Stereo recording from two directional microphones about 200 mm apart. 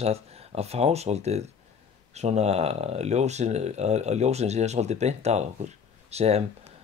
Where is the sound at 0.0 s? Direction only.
30° right (ahead or behind).